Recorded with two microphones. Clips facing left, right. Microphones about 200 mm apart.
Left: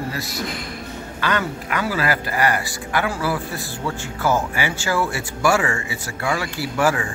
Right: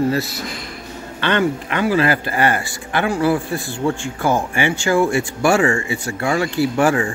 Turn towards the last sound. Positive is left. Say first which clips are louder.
# right 5 dB
turn(degrees=-30)  # may be behind; listen again after turning